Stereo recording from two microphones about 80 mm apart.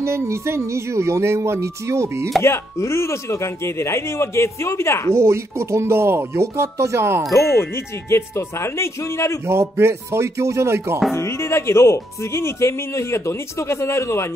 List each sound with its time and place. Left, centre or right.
0.0 s music: right
2.4 s speech: left
5.1 s music: right
7.3 s speech: left
9.5 s music: right
11.1 s speech: left